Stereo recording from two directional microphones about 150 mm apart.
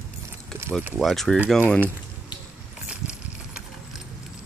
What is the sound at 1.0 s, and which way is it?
Speech, centre (ahead or behind).